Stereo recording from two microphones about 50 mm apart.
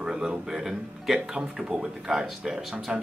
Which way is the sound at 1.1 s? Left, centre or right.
Centre.